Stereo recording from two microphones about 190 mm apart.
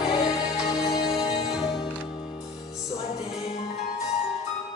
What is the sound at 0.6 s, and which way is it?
Music, 20° left (ahead or behind).